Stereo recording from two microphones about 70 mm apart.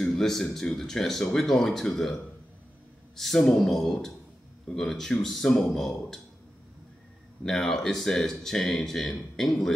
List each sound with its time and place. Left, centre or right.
0.0 s speech: centre
3.2 s speech: centre
7.4 s speech: centre